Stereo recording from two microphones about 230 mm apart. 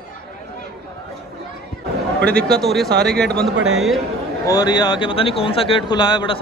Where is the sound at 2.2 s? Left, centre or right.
Centre.